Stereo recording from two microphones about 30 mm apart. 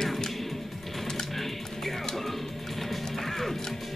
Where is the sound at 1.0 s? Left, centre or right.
Centre.